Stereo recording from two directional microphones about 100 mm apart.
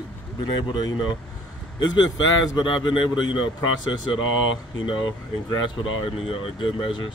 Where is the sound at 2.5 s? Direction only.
50° left (ahead or behind).